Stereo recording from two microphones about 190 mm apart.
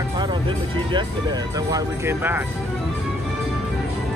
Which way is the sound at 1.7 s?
10° right (ahead or behind).